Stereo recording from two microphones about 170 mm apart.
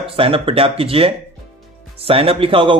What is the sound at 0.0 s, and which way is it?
A man's voice, 35° right (ahead or behind).